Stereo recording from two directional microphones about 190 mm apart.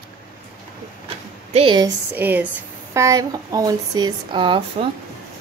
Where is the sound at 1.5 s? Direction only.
30° right (ahead or behind).